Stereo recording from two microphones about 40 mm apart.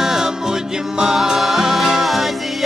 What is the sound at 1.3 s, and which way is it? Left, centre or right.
Music, centre.